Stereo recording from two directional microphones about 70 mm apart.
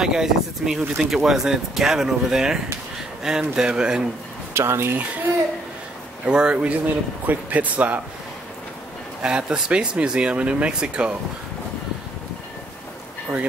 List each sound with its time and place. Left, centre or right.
0.0 s speech: centre
4.6 s speech: right
6.2 s speech: centre
9.2 s speech: centre